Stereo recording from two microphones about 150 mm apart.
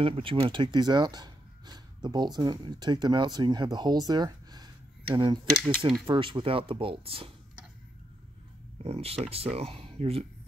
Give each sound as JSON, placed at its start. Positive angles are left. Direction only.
{"t": 0.0, "sound": "speech", "side_deg": -35}
{"t": 8.8, "sound": "speech", "side_deg": -40}